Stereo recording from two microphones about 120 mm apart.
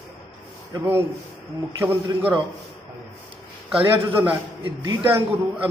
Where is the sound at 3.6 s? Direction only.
10° right (ahead or behind).